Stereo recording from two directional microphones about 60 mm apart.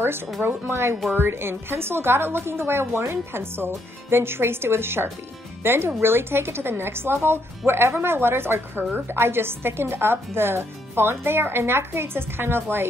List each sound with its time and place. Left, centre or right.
0.4 s speech: right